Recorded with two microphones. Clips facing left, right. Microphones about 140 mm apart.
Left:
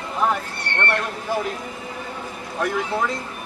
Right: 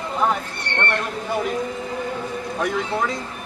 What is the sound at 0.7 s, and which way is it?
Speech, 20° right (ahead or behind).